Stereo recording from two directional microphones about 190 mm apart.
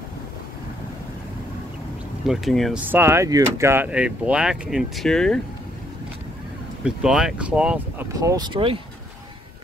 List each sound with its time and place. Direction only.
2.2 s speech: centre (ahead or behind)
2.9 s speech: 10° right (ahead or behind); by 5.4 s 5° left (ahead or behind)
6.8 s speech: 5° right (ahead or behind)
8.1 s speech: 20° right (ahead or behind)